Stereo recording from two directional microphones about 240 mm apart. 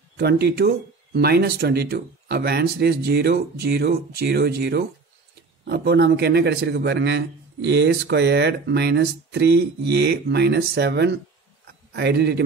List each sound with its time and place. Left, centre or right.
0.2 s a man's voice: right